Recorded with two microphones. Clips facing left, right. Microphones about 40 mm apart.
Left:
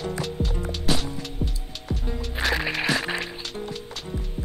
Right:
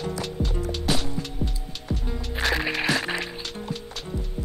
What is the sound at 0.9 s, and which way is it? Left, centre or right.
Music, centre.